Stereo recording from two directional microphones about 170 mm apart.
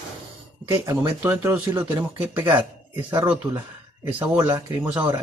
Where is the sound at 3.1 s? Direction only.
25° right (ahead or behind).